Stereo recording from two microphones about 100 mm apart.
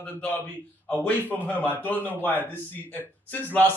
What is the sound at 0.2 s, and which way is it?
A man's voice, 20° left (ahead or behind).